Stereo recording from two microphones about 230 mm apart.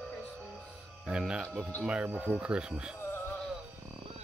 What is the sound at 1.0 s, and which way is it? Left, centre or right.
Speech, centre.